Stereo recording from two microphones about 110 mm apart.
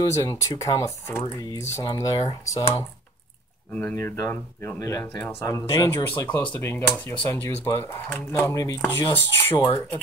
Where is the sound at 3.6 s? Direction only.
15° left (ahead or behind).